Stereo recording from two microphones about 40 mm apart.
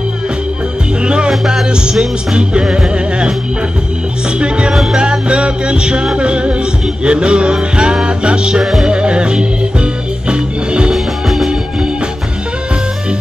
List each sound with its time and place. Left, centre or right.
1.0 s music: right
1.3 s music: centre
1.7 s music: right
4.4 s music: right
11.2 s music: centre